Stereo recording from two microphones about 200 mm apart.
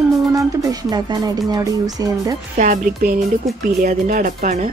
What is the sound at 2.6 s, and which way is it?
Speech, 40° right (ahead or behind).